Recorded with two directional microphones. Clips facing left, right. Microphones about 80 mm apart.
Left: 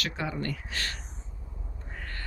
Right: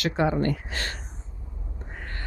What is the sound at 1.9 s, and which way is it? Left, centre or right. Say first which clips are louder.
Duck: right 2 dB; right.